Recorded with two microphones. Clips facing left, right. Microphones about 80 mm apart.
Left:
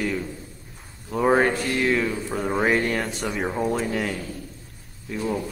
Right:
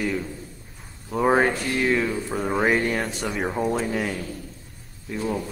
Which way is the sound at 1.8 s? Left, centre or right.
Centre.